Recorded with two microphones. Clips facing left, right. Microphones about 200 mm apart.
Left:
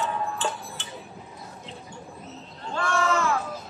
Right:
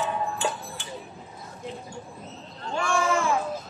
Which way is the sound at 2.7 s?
15° right (ahead or behind).